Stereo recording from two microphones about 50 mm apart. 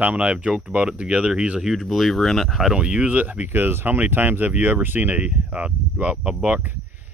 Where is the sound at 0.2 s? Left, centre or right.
Right.